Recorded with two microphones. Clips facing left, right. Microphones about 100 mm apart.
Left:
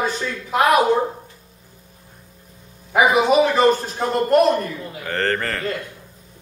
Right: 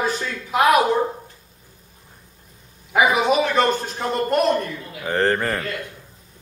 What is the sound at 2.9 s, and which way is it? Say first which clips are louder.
Speech: left 3 dB; centre (ahead or behind).